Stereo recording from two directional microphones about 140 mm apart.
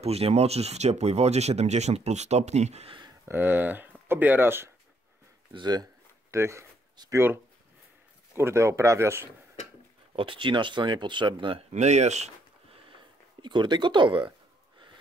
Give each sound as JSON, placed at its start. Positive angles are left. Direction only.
{"t": 0.0, "sound": "speech", "side_deg": -50}
{"t": 3.3, "sound": "speech", "side_deg": -15}
{"t": 5.5, "sound": "speech", "side_deg": -30}
{"t": 6.3, "sound": "speech", "side_deg": -20}
{"t": 8.4, "sound": "speech", "side_deg": -20}
{"t": 10.1, "sound": "speech", "side_deg": -40}
{"t": 11.7, "sound": "speech", "side_deg": -55}
{"t": 13.4, "sound": "speech", "side_deg": -35}